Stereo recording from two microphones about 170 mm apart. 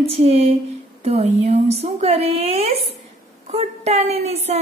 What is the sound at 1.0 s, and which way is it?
A woman's voice, 40° right (ahead or behind).